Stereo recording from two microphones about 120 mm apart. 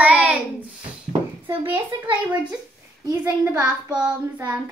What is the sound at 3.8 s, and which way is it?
Speech, 10° right (ahead or behind).